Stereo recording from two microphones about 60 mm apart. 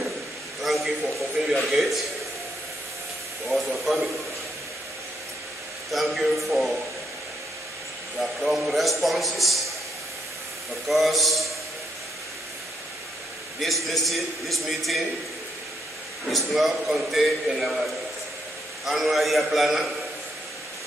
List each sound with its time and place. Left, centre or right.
0.6 s a sound: centre
1.5 s a man's voice: centre
3.4 s a man's voice: centre
5.9 s a man's voice: centre
8.2 s a man's voice: centre
10.9 s a man's voice: centre
13.6 s a man's voice: centre
16.3 s a man's voice: centre
18.9 s a man's voice: centre